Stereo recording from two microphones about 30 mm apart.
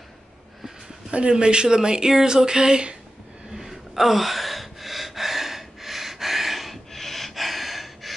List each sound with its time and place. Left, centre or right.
1.1 s speech: right
3.5 s gasp: centre
6.9 s a sound: centre